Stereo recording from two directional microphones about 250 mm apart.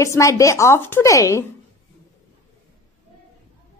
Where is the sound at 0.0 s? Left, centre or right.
Centre.